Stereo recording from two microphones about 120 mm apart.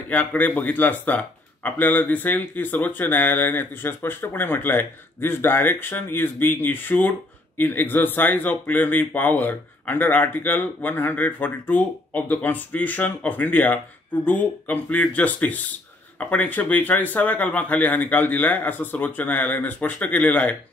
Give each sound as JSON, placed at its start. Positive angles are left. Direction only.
{"t": 0.1, "sound": "speech", "side_deg": 15}